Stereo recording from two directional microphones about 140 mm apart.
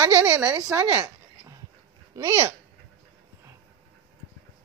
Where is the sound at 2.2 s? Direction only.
20° right (ahead or behind).